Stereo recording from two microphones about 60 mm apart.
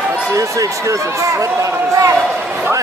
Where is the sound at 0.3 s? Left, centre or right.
Right.